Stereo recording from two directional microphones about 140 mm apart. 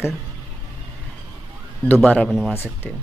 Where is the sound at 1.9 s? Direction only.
5° left (ahead or behind).